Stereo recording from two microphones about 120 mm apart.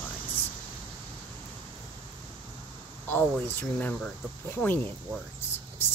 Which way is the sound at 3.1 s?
15° left (ahead or behind).